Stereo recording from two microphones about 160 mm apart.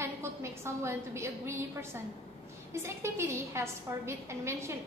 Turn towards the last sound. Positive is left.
turn(degrees=-15)  # may be behind; listen again after turning